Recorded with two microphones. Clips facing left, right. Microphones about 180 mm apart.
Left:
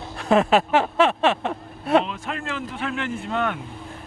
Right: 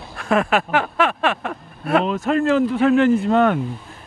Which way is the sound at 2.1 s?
40° right (ahead or behind).